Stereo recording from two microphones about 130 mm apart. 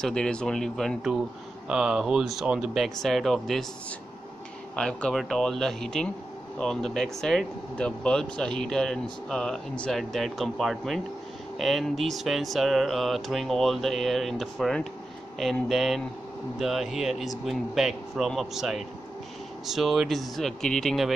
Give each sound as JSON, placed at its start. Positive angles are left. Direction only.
{"t": 0.0, "sound": "speech", "side_deg": 5}
{"t": 4.7, "sound": "speech", "side_deg": 5}